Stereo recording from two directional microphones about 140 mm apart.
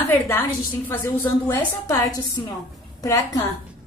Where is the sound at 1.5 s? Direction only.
25° left (ahead or behind).